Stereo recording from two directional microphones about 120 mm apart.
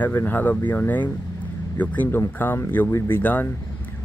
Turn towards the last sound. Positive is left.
turn(degrees=15)  # may be behind; listen again after turning